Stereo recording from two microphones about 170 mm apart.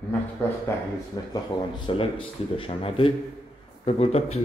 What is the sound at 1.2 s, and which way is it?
A man's voice, 25° left (ahead or behind).